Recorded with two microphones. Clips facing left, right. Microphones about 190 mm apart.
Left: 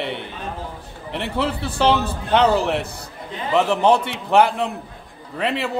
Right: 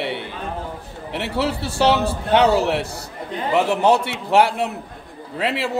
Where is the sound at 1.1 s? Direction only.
70° right (ahead or behind).